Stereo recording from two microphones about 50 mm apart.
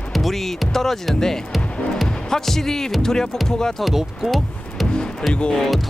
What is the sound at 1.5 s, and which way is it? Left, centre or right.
Music, centre.